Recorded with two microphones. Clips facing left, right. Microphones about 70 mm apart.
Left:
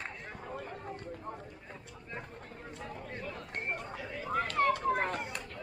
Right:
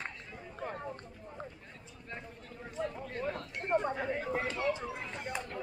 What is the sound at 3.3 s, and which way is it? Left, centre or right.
Chatter, right.